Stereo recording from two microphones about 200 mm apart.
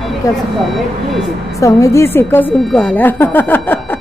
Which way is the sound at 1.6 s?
15° left (ahead or behind).